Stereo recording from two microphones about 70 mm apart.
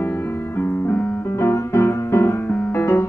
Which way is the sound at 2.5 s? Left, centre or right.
Left.